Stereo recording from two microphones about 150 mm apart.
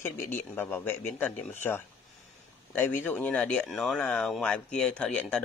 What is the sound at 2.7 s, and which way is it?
Speech, 15° left (ahead or behind).